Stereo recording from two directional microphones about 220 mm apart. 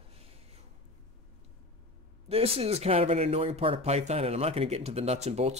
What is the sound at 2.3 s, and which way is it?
Speech, 25° right (ahead or behind).